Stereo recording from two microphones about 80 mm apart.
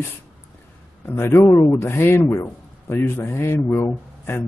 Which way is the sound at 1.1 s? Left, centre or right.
Left.